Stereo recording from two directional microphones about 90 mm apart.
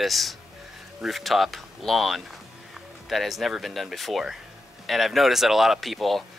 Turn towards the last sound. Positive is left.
turn(degrees=0)  # may be behind; listen again after turning